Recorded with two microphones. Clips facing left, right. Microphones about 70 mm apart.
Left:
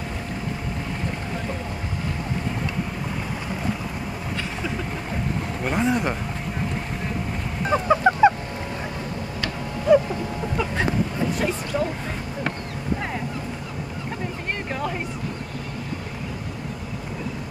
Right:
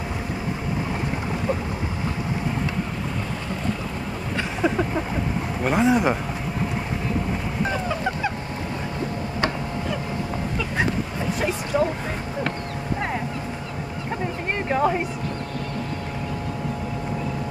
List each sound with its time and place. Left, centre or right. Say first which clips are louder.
4.4 s vehicle: right 9 dB; right
5.6 s speech: right 4 dB; centre
7.7 s goose: left 6 dB; left
9.9 s vehicle: left 18 dB; centre
11.1 s vehicle: left 1 dB; centre
14.7 s a sound: right 9 dB; right